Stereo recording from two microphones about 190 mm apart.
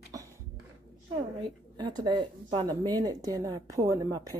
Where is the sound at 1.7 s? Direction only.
25° right (ahead or behind).